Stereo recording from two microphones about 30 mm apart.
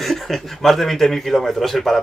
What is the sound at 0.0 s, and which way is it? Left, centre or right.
Speech, centre.